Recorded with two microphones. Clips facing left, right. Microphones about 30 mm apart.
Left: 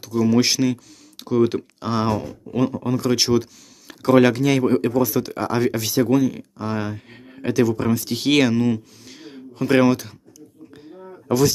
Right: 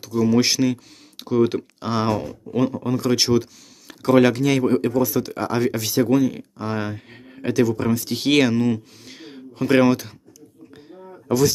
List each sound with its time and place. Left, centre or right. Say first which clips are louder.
0.1 s speech: even; centre
1.1 s computer keyboard: even; centre
1.8 s speech: even; centre
2.2 s speech: even; centre
5.4 s speech: left 1 dB; centre
6.2 s speech: even; centre
9.0 s a sound: even; centre
9.7 s speech: even; centre